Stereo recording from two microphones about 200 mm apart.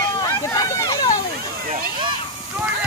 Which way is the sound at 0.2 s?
15° left (ahead or behind).